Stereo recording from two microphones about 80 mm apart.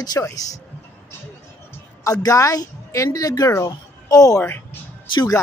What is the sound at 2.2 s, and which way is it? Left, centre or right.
Speech, left.